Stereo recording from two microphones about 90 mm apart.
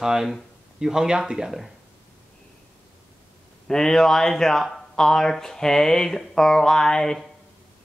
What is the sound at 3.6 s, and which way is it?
Speech, 5° left (ahead or behind).